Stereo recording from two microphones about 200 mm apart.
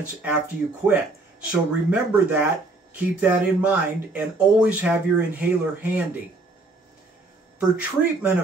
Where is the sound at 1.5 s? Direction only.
5° right (ahead or behind).